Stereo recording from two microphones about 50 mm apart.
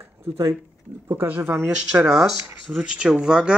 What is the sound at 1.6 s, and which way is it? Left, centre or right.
Speech, centre.